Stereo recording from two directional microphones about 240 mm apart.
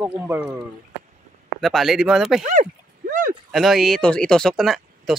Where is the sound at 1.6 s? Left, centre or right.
Centre.